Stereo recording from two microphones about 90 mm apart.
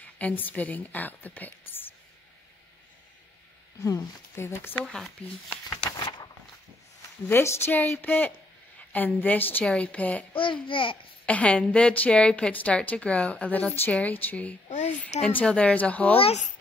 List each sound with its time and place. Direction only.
0.0 s a woman's voice: 15° left (ahead or behind)
3.8 s speech: 30° left (ahead or behind)
4.8 s speech: centre (ahead or behind)
5.9 s a sound: 55° left (ahead or behind)
7.2 s a woman's voice: 25° left (ahead or behind)
10.3 s speech: 75° left (ahead or behind)
11.2 s a woman's voice: 15° left (ahead or behind)